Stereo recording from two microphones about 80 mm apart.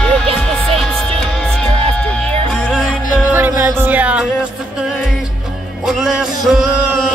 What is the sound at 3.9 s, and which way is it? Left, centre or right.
Music, centre.